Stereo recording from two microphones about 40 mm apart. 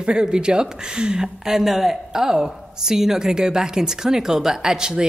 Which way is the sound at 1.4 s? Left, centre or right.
Centre.